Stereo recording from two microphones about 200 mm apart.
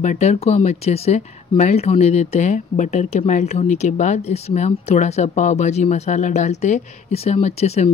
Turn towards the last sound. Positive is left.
turn(degrees=30)  # may be behind; listen again after turning